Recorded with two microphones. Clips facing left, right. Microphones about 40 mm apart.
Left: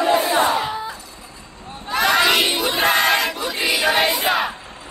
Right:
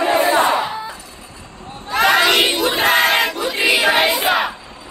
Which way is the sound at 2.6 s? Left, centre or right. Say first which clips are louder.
Right 3 dB; centre.